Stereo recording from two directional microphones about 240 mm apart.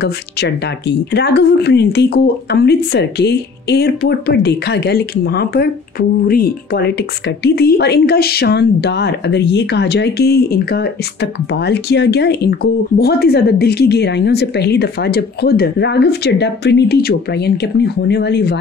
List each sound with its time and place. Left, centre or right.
0.0 s speech: left